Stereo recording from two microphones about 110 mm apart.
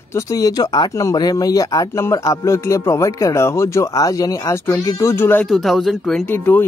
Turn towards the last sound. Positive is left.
turn(degrees=20)  # may be behind; listen again after turning